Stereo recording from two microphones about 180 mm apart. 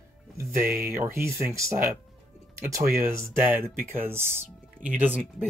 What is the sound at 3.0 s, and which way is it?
Speech, 15° right (ahead or behind).